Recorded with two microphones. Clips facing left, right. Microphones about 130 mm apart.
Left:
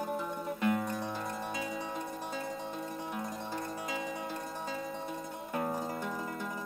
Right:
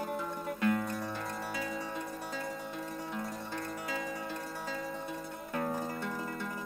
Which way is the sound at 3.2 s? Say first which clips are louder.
Left 1 dB; 15° left (ahead or behind).